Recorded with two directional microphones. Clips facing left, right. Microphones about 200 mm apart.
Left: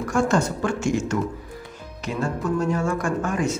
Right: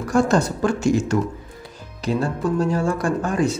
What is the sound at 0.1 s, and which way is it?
Speech, 35° right (ahead or behind).